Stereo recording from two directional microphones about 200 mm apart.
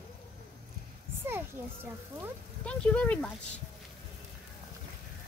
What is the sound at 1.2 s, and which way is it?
A child's voice, 10° right (ahead or behind).